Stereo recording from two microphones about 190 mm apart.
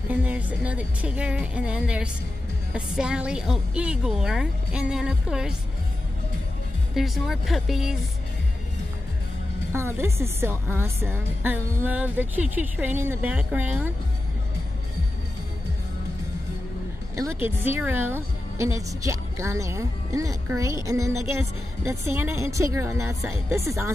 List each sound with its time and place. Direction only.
0.1 s a woman's voice: 10° right (ahead or behind)
7.0 s a woman's voice: centre (ahead or behind)
9.7 s a woman's voice: 10° right (ahead or behind)
17.2 s a woman's voice: 15° right (ahead or behind)